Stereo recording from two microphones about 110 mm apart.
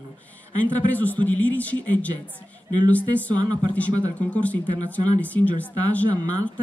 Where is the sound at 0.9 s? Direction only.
15° left (ahead or behind).